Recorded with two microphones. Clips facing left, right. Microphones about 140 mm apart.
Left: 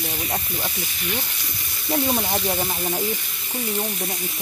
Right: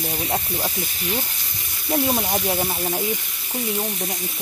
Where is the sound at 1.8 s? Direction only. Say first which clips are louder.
Right 1 dB; 5° right (ahead or behind).